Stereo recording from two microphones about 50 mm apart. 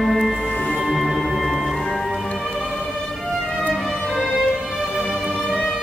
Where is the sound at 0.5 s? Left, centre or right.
Left.